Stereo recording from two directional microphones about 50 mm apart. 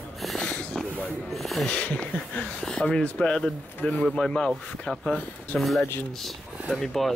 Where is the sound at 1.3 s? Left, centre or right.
Centre.